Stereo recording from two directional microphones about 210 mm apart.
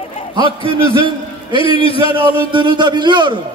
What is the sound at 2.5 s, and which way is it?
Speech, 20° right (ahead or behind).